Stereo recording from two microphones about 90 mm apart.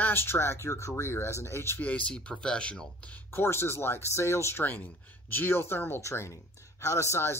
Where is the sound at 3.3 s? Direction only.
25° left (ahead or behind).